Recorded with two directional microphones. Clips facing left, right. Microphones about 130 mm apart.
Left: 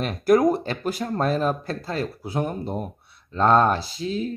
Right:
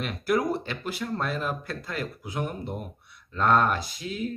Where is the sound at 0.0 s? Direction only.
40° left (ahead or behind).